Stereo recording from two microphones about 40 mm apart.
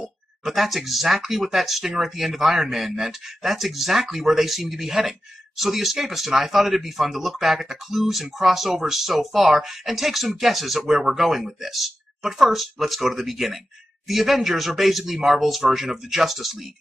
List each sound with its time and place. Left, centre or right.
0.4 s speech: centre